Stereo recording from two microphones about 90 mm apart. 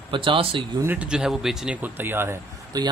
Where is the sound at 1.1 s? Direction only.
5° right (ahead or behind).